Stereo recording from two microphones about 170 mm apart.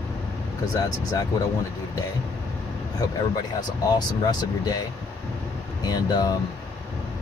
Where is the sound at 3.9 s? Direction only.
25° left (ahead or behind).